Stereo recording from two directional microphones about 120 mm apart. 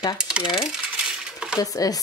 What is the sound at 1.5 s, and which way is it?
Speech, 30° left (ahead or behind).